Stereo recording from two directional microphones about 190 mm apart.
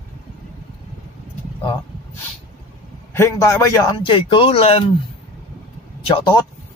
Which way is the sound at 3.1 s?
15° left (ahead or behind).